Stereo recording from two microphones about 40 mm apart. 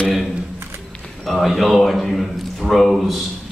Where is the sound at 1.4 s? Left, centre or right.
Centre.